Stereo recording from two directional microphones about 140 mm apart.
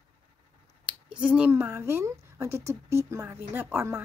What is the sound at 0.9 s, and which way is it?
A woman's voice, 5° right (ahead or behind).